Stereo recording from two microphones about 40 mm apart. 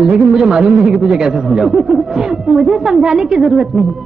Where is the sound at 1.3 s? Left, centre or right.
Centre.